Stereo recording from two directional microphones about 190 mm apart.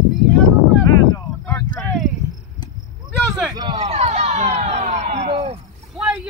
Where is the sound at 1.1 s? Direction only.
10° left (ahead or behind).